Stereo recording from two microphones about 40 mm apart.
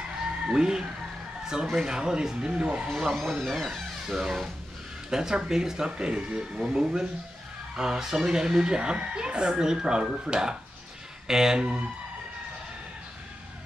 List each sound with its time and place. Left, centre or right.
0.5 s speech: centre
1.4 s chicken: centre
1.8 s speech: centre
3.1 s speech: centre
4.0 s speech: centre